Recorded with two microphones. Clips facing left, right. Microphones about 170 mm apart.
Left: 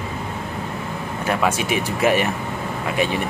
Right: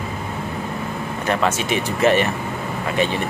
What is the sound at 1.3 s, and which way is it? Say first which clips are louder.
Speech: even; 10° left (ahead or behind).